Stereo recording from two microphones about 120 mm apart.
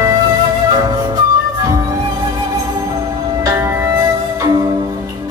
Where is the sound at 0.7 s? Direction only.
35° right (ahead or behind).